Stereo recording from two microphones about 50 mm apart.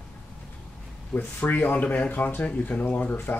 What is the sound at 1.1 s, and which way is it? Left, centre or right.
Speech, left.